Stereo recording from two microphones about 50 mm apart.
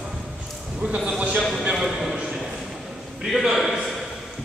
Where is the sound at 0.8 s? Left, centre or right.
Right.